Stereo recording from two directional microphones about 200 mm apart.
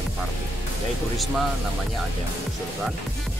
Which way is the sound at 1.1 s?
Centre (ahead or behind).